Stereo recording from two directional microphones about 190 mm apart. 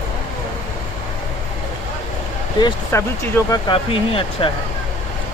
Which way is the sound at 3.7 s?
30° left (ahead or behind).